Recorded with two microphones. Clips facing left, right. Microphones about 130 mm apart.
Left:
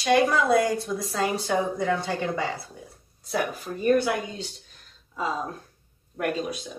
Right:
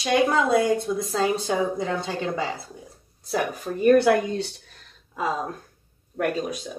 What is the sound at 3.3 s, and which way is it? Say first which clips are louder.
Speech: right 2 dB; 40° right (ahead or behind).